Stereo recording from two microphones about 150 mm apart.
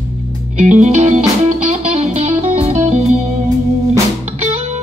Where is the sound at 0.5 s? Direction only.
50° right (ahead or behind).